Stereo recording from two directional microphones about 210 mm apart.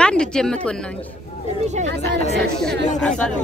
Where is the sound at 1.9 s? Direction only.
55° right (ahead or behind).